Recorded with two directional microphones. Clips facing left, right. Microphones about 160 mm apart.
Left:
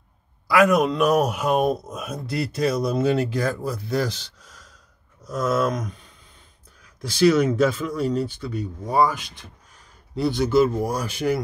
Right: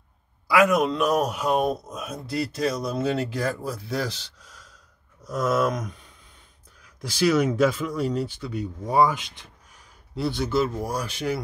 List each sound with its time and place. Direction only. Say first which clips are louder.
0.5 s speech: left 2 dB; 5° right (ahead or behind)
7.0 s speech: left 4 dB; 10° right (ahead or behind)
10.1 s speech: left 5 dB; centre (ahead or behind)